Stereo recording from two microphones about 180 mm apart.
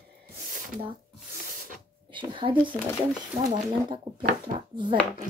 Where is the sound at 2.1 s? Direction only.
25° right (ahead or behind).